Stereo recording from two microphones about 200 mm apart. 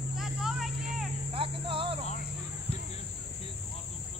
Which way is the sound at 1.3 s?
25° right (ahead or behind).